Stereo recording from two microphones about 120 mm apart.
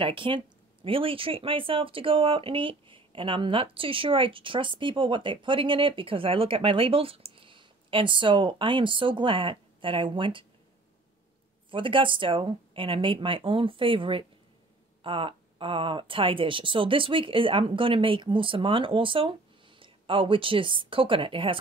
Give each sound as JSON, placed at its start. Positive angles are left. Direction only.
{"t": 0.0, "sound": "speech", "side_deg": -45}
{"t": 11.7, "sound": "speech", "side_deg": -45}